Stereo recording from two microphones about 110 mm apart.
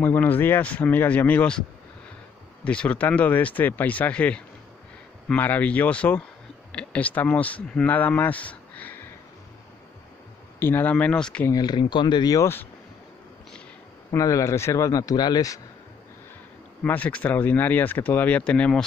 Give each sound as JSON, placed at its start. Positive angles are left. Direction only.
{"t": 0.0, "sound": "speech", "side_deg": 20}
{"t": 2.6, "sound": "speech", "side_deg": 10}
{"t": 10.6, "sound": "speech", "side_deg": 20}
{"t": 11.4, "sound": "speech", "side_deg": 35}
{"t": 14.1, "sound": "speech", "side_deg": 30}
{"t": 16.8, "sound": "speech", "side_deg": 15}